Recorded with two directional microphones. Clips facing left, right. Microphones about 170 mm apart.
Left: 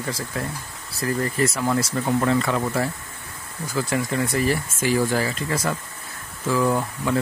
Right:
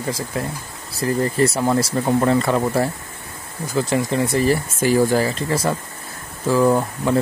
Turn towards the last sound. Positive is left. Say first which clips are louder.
# right 5 dB
turn(degrees=-30)  # may be behind; listen again after turning